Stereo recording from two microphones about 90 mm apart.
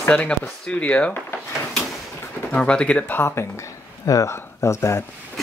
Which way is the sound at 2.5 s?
10° left (ahead or behind).